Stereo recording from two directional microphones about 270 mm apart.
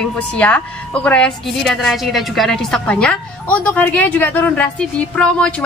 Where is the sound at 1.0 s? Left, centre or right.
Centre.